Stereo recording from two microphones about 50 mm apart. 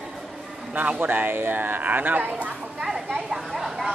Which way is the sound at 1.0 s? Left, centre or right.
Right.